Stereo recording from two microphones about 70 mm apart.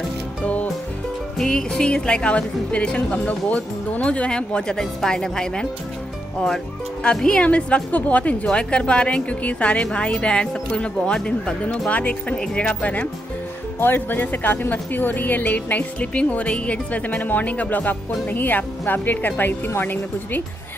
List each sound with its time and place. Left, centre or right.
1.4 s a woman's voice: centre
13.7 s a woman's voice: left